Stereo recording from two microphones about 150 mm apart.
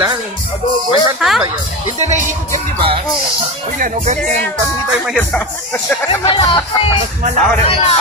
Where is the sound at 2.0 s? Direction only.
50° right (ahead or behind).